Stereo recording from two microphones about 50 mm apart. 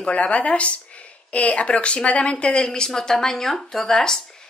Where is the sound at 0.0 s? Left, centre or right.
Left.